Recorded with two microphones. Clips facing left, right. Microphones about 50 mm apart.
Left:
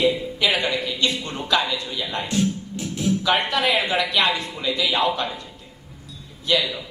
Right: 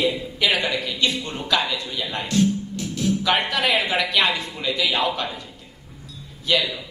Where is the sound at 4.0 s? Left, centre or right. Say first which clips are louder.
Even; left.